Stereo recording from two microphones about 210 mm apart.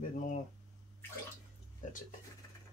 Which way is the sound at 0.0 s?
40° left (ahead or behind).